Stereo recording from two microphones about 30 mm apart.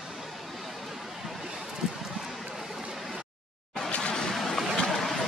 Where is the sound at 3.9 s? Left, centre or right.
Left.